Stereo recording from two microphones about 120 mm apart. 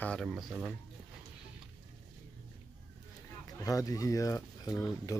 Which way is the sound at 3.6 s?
30° left (ahead or behind).